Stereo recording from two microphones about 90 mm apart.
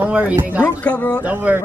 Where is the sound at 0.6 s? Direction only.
15° left (ahead or behind).